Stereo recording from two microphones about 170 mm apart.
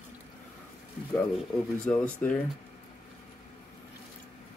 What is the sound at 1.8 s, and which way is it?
Speech, 5° left (ahead or behind).